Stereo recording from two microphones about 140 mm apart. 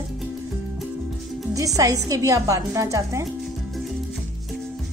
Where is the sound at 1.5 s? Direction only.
25° right (ahead or behind).